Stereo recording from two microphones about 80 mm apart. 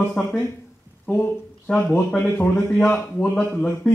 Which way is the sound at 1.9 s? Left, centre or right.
Left.